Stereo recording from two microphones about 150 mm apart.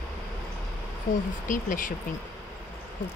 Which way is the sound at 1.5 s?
60° left (ahead or behind).